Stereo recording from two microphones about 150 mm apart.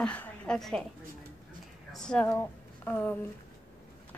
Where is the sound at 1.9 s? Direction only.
5° left (ahead or behind).